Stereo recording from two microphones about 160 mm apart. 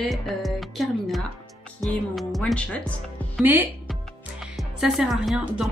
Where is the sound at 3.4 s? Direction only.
10° right (ahead or behind).